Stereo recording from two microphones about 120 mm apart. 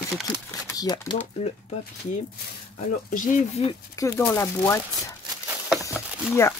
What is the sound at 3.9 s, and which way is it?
Speech, 25° left (ahead or behind).